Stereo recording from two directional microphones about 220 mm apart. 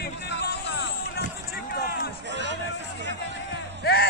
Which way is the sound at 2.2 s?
55° right (ahead or behind).